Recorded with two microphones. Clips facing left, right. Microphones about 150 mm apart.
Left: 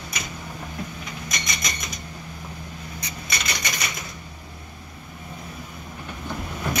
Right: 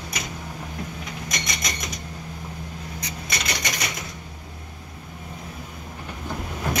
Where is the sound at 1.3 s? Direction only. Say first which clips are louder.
Right 1 dB; 75° right (ahead or behind).